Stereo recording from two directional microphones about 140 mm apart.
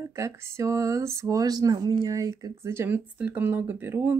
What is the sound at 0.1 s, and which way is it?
Speech, 20° right (ahead or behind).